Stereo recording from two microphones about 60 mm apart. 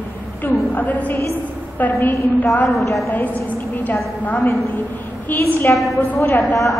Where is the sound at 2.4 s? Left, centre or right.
Left.